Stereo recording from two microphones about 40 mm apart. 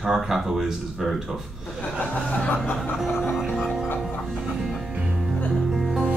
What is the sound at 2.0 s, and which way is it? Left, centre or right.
Speech, left.